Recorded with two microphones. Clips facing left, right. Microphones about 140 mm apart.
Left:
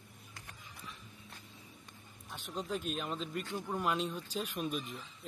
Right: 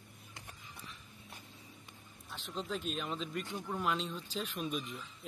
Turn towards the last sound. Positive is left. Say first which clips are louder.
# left 1 dB
turn(degrees=0)  # may be behind; listen again after turning